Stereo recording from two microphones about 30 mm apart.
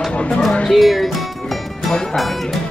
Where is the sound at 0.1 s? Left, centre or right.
Left.